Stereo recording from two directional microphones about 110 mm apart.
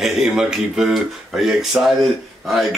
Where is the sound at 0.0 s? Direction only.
5° right (ahead or behind).